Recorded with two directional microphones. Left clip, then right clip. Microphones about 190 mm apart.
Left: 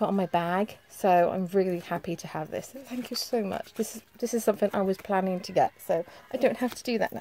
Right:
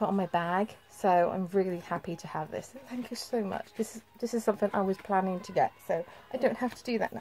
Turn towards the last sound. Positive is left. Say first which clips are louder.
# left 3 dB
turn(degrees=35)  # may be behind; listen again after turning